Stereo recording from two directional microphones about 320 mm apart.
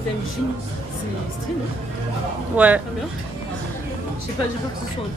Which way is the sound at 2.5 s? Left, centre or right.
Centre.